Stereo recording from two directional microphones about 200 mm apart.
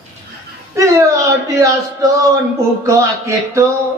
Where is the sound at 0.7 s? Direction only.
15° right (ahead or behind).